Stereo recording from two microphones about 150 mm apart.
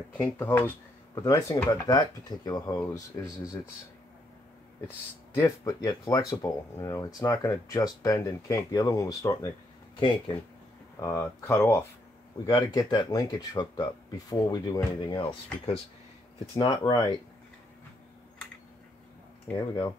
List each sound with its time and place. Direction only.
0.2 s speech: 10° left (ahead or behind)
1.2 s speech: 25° left (ahead or behind)
5.3 s speech: 15° left (ahead or behind)
9.9 s speech: 30° left (ahead or behind)
11.0 s speech: 15° left (ahead or behind)
12.4 s speech: 30° left (ahead or behind)